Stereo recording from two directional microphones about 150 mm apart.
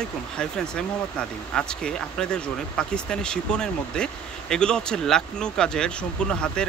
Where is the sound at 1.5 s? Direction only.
5° left (ahead or behind).